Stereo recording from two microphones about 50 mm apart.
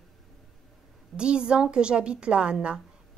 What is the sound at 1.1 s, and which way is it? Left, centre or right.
A woman's voice, centre.